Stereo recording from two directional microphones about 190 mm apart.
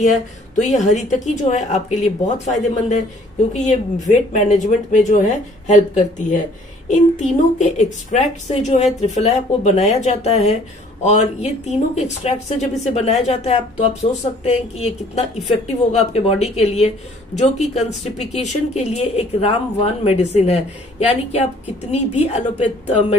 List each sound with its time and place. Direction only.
0.0 s speech: 40° left (ahead or behind)